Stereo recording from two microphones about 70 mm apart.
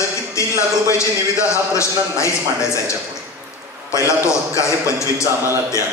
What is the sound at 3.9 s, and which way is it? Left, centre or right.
A man's voice, left.